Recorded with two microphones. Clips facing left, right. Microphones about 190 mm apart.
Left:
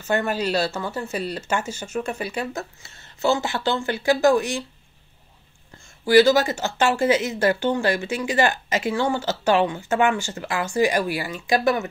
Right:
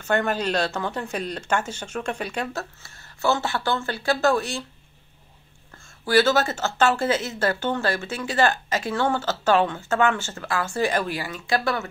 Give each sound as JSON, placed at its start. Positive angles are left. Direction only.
{"t": 0.0, "sound": "speech", "side_deg": 10}
{"t": 2.8, "sound": "speech", "side_deg": 20}
{"t": 6.0, "sound": "speech", "side_deg": 15}